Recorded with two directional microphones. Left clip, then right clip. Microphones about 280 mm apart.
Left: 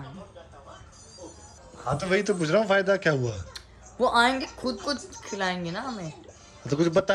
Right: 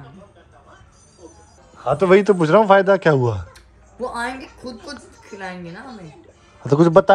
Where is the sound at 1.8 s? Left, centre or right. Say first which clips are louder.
Right 12 dB; centre.